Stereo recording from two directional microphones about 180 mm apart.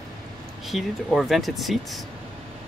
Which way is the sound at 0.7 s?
Centre (ahead or behind).